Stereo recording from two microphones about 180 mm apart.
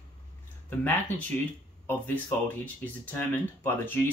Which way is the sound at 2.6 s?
10° left (ahead or behind).